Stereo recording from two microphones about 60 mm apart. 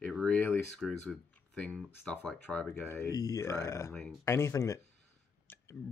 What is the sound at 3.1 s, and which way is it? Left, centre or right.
Speech, left.